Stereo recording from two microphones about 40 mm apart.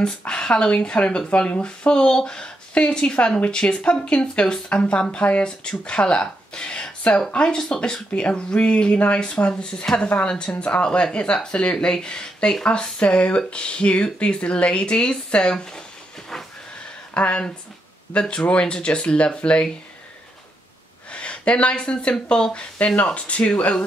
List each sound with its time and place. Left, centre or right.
0.3 s speech: left
17.1 s speech: left
18.3 s speech: left
21.1 s speech: left